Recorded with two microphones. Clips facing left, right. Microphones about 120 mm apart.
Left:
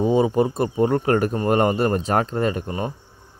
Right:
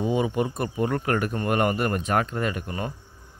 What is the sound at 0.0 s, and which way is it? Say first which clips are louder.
Speech: left 6 dB; 35° left (ahead or behind).